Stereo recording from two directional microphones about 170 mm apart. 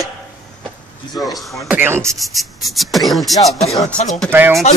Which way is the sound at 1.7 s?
10° right (ahead or behind).